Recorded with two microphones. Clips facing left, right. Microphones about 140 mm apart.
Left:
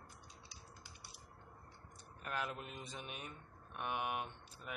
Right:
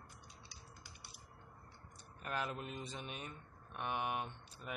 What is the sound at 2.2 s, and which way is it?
Speech, centre (ahead or behind).